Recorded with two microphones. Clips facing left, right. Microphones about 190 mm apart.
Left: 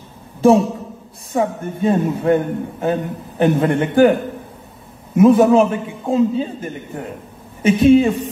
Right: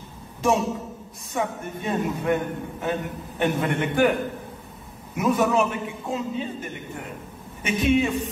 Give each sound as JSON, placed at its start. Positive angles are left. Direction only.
{"t": 0.4, "sound": "a man's voice", "side_deg": 30}